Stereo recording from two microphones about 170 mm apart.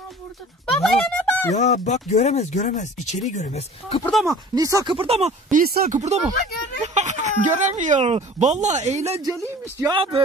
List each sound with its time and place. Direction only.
0.8 s speech: 5° left (ahead or behind)
1.5 s speech: 45° left (ahead or behind)
4.0 s speech: centre (ahead or behind)
4.3 s speech: 20° right (ahead or behind)
4.9 s speech: 35° right (ahead or behind)
5.5 s speech: 55° right (ahead or behind)
9.2 s speech: 20° right (ahead or behind)
9.9 s speech: 30° right (ahead or behind)